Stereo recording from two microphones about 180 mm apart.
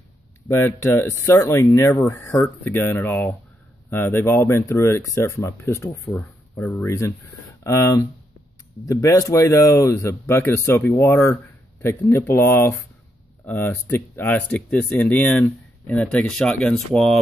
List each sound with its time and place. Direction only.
0.5 s speech: 15° left (ahead or behind)